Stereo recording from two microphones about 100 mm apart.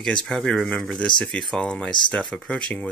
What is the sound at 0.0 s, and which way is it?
Speech, 10° left (ahead or behind).